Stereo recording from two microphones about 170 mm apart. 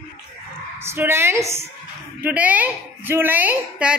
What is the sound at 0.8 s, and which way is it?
A woman's voice, 15° right (ahead or behind).